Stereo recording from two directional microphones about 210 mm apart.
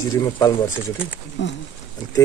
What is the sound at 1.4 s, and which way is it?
Speech, 60° left (ahead or behind).